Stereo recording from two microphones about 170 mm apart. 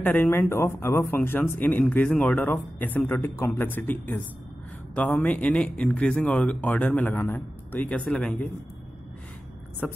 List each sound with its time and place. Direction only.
0.0 s speech: 10° left (ahead or behind)
9.8 s speech: 5° left (ahead or behind)